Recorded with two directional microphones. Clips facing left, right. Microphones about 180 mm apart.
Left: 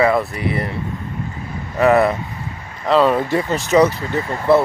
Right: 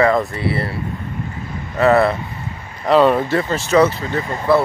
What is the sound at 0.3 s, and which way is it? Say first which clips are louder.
Speech: right 1 dB; 15° left (ahead or behind).